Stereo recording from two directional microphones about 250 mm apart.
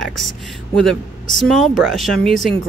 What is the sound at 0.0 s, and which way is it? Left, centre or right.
Speech, centre.